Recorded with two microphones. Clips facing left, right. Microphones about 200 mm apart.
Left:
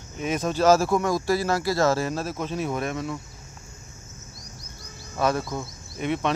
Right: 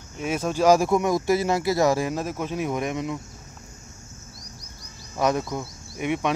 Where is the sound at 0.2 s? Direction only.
10° right (ahead or behind).